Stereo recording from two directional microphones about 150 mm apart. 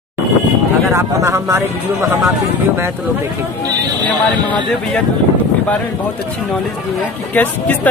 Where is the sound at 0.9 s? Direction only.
20° right (ahead or behind).